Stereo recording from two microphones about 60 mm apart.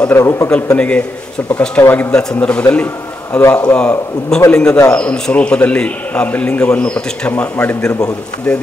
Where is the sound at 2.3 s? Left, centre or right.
Left.